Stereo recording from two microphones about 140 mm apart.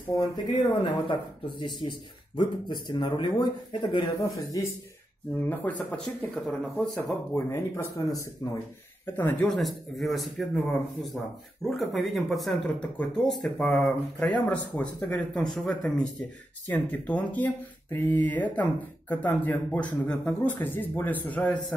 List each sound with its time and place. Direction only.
0.2 s speech: 30° left (ahead or behind)
5.5 s speech: 10° left (ahead or behind)
7.0 s speech: 15° left (ahead or behind)
8.4 s speech: 30° left (ahead or behind)
9.0 s speech: 15° left (ahead or behind)
9.6 s speech: centre (ahead or behind)
11.7 s speech: centre (ahead or behind)